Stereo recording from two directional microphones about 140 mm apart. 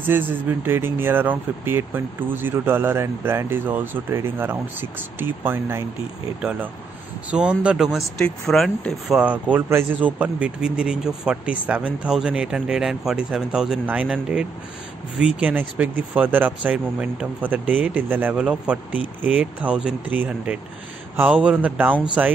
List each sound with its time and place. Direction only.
0.0 s speech: 15° right (ahead or behind)
7.2 s speech: 5° right (ahead or behind)
9.2 s speech: 10° right (ahead or behind)
15.1 s speech: 5° right (ahead or behind)